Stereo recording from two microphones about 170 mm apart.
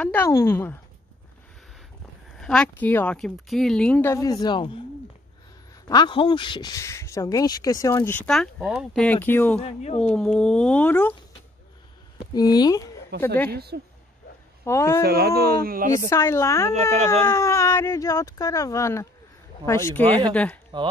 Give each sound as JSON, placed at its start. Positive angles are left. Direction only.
{"t": 0.0, "sound": "speech", "side_deg": 10}
{"t": 2.3, "sound": "speech", "side_deg": 5}
{"t": 5.9, "sound": "speech", "side_deg": 25}
{"t": 9.0, "sound": "speech", "side_deg": 10}
{"t": 9.6, "sound": "speech", "side_deg": 40}
{"t": 10.1, "sound": "speech", "side_deg": 5}
{"t": 12.4, "sound": "speech", "side_deg": 25}
{"t": 13.1, "sound": "speech", "side_deg": -75}
{"t": 14.6, "sound": "speech", "side_deg": 15}
{"t": 15.0, "sound": "speech", "side_deg": -70}
{"t": 16.1, "sound": "speech", "side_deg": 15}
{"t": 20.7, "sound": "speech", "side_deg": -25}